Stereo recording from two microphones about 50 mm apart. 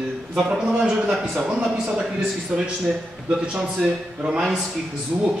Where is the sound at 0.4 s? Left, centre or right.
Centre.